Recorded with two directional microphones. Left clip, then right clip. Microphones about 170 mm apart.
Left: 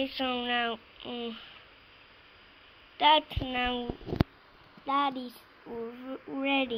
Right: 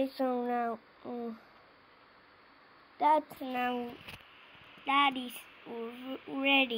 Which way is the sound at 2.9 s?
15° right (ahead or behind).